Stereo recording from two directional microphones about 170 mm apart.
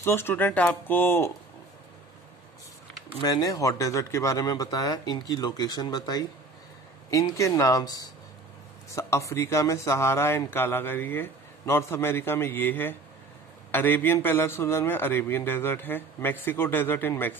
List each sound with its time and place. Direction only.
0.0 s speech: 15° left (ahead or behind)
3.2 s speech: 25° left (ahead or behind)